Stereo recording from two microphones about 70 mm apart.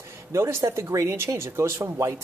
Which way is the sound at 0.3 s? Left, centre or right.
Right.